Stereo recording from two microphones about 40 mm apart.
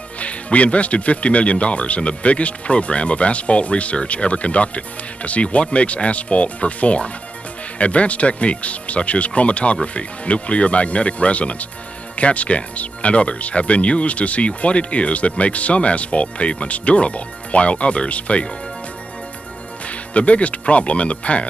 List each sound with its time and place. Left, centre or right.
0.2 s speech: left
19.9 s speech: left